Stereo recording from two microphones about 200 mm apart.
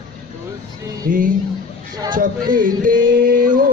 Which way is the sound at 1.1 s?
45° right (ahead or behind).